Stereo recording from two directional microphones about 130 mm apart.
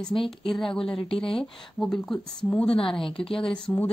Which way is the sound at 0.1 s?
40° left (ahead or behind).